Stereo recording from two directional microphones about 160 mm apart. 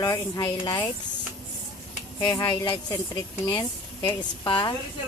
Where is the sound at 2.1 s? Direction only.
20° left (ahead or behind).